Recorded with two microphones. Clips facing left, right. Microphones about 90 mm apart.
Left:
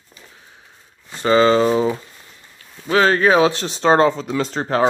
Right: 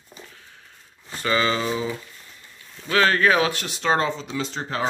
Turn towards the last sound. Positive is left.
turn(degrees=45)  # may be behind; listen again after turning